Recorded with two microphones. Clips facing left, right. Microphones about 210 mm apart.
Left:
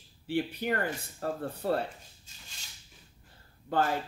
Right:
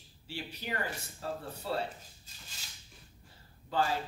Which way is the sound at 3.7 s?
55° left (ahead or behind).